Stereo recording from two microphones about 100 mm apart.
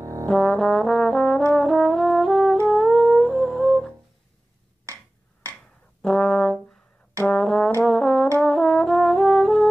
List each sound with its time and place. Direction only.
0.0 s brass instrument: 30° right (ahead or behind)
0.3 s brass instrument: 5° left (ahead or behind)
2.6 s humming: centre (ahead or behind)
6.0 s brass instrument: 5° left (ahead or behind)